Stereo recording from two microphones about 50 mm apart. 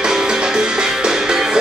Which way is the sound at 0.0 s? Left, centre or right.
Centre.